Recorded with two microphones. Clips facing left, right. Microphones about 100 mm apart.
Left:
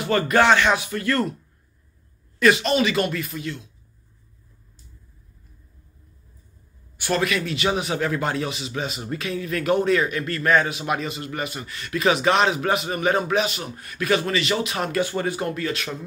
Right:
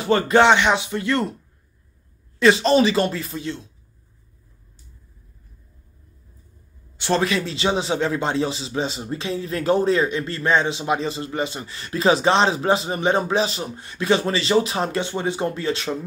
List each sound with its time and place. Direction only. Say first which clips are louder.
0.0 s a man's voice: right 3 dB; 25° right (ahead or behind)
2.3 s a man's voice: right 3 dB; 25° right (ahead or behind)
7.0 s a man's voice: right 2 dB; 30° right (ahead or behind)